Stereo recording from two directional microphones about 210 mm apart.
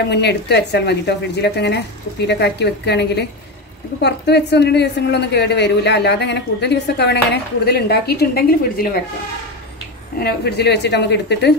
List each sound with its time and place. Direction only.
0.1 s a woman's voice: 55° left (ahead or behind)
10.1 s a woman's voice: 50° left (ahead or behind)